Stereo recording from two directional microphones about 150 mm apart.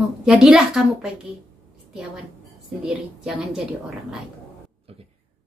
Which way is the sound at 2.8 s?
Centre (ahead or behind).